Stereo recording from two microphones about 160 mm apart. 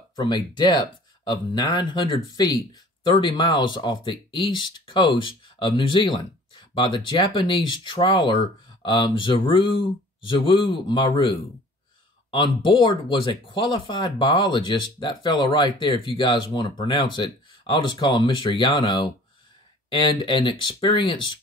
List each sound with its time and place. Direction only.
0.1 s speech: 30° left (ahead or behind)